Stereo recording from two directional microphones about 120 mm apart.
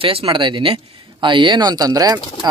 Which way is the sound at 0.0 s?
50° right (ahead or behind).